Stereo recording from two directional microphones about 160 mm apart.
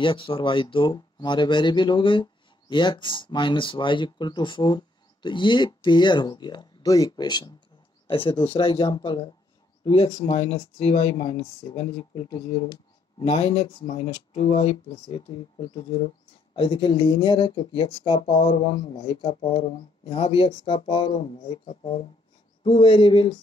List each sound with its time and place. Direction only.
0.0 s speech: 30° left (ahead or behind)
13.2 s speech: 40° left (ahead or behind)